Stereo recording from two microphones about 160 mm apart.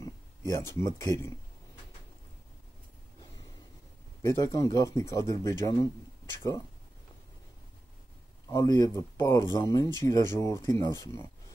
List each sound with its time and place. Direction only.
0.0 s speech: 20° left (ahead or behind)
4.2 s speech: 20° left (ahead or behind)
8.5 s speech: 20° left (ahead or behind)